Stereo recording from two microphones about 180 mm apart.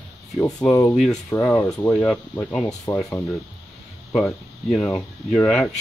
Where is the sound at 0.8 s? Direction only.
Centre (ahead or behind).